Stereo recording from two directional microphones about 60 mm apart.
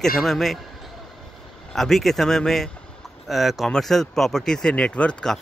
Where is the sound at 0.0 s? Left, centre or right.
Centre.